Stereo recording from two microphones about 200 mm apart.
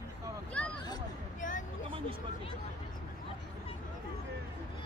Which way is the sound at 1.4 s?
40° left (ahead or behind).